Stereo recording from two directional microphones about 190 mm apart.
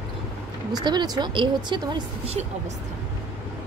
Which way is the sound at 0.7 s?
20° right (ahead or behind).